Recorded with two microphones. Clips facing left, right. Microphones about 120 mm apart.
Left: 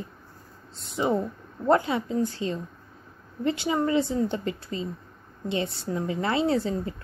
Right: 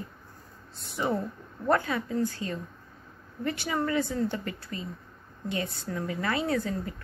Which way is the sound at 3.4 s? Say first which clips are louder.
Left 5 dB; 20° left (ahead or behind).